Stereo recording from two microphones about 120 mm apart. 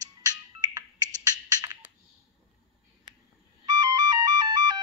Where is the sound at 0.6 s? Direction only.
30° right (ahead or behind).